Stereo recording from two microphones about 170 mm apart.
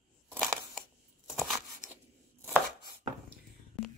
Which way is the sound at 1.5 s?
15° right (ahead or behind).